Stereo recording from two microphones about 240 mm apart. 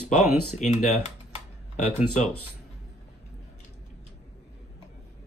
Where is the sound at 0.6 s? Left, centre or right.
Left.